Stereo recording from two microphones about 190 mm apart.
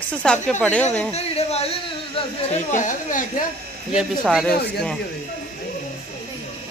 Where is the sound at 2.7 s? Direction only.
45° left (ahead or behind).